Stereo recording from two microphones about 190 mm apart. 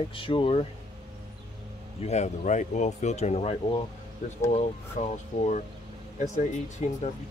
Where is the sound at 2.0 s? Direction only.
35° left (ahead or behind).